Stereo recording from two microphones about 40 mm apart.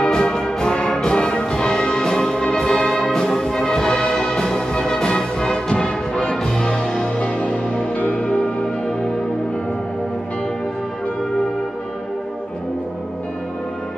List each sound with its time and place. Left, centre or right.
0.0 s music: centre
7.2 s music: left